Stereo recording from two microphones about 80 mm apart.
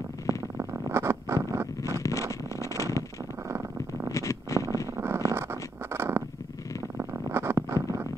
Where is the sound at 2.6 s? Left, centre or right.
Left.